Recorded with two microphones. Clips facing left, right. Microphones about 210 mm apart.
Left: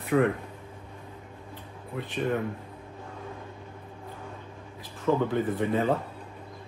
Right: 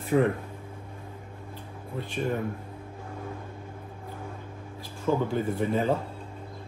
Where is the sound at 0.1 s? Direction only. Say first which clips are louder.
Even; 25° right (ahead or behind).